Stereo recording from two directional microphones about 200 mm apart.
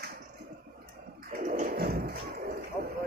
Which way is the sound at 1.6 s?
45° right (ahead or behind).